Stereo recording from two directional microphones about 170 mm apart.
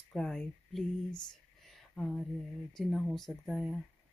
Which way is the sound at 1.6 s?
Centre (ahead or behind).